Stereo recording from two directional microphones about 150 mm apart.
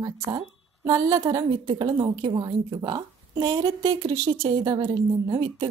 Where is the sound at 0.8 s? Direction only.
25° right (ahead or behind).